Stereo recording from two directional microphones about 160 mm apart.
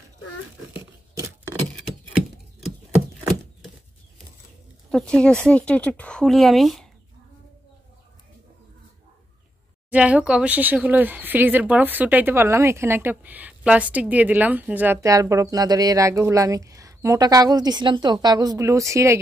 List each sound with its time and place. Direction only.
0.7 s tearing: 15° right (ahead or behind)
4.9 s speech: 5° left (ahead or behind)
9.8 s speech: 10° right (ahead or behind)